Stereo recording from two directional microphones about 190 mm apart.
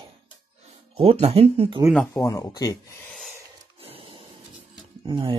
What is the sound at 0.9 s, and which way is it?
Speech, 30° right (ahead or behind).